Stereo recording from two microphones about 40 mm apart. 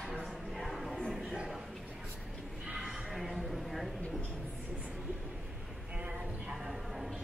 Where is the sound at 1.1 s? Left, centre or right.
Centre.